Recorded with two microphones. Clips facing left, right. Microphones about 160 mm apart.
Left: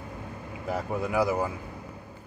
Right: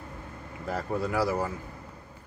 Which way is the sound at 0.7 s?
15° left (ahead or behind).